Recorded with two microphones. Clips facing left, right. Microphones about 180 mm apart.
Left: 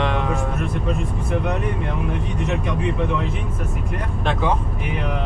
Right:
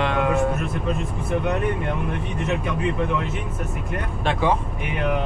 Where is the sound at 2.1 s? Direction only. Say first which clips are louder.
Left 1 dB; centre (ahead or behind).